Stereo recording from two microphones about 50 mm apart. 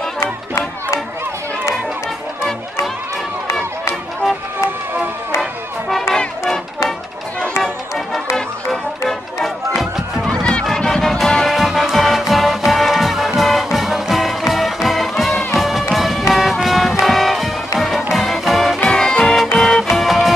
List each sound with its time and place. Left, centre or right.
0.2 s music: left
5.9 s music: centre
9.4 s music: centre
10.8 s music: centre
18.9 s music: centre